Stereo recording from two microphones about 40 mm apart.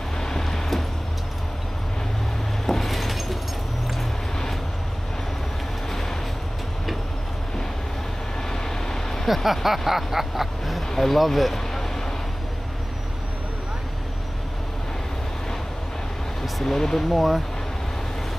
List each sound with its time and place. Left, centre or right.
0.2 s vehicle: centre
2.6 s a sound: centre
5.9 s vehicle: centre
8.5 s vehicle: centre
9.2 s vehicle: centre
16.6 s speech: centre
17.1 s vehicle: centre